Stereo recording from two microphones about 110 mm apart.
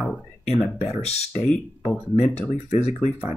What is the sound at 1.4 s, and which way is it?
Speech, 15° left (ahead or behind).